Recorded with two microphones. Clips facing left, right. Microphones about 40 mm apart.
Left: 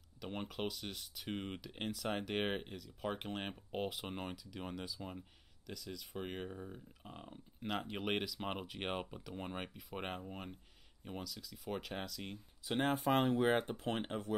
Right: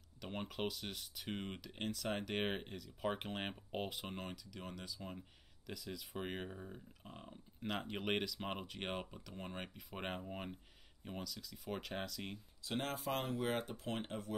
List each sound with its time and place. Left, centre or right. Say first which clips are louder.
0.2 s speech: left 1 dB; centre
4.1 s speech: left 3 dB; centre
5.7 s speech: even; centre
9.8 s speech: left 1 dB; centre
12.6 s speech: left 6 dB; left